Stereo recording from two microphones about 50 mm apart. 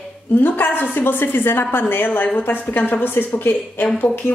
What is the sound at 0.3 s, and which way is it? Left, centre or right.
A woman's voice, left.